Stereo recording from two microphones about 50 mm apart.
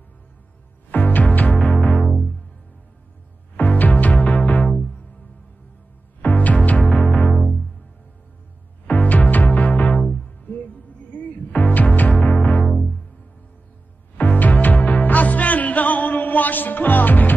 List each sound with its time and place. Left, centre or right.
0.9 s music: left
3.5 s music: left
6.2 s music: left
6.8 s music: centre
8.8 s music: left
14.1 s music: left